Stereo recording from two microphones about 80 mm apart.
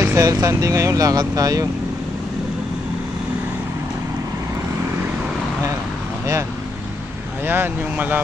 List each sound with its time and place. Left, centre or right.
0.0 s speech: right
7.4 s speech: right